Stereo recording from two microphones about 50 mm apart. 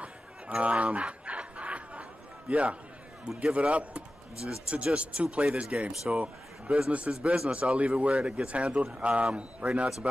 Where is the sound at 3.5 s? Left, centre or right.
Right.